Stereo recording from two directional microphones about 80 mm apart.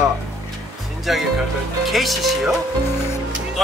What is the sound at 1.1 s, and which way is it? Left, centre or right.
Speech, centre.